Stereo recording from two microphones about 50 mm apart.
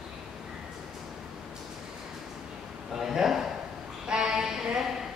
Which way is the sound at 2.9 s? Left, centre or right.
Centre.